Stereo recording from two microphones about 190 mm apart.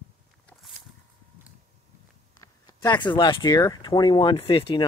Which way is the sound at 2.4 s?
20° left (ahead or behind).